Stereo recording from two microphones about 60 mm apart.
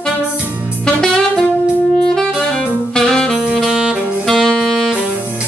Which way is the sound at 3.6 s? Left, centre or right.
Centre.